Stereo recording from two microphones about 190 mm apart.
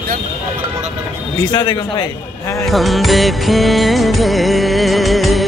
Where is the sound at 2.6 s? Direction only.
Centre (ahead or behind).